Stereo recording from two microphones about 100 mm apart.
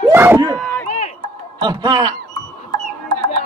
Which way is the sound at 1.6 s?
45° right (ahead or behind).